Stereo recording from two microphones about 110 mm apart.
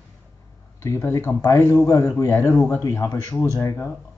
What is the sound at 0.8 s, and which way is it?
A man's voice, 25° left (ahead or behind).